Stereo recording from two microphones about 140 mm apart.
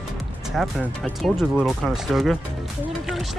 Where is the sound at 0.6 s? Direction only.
Centre (ahead or behind).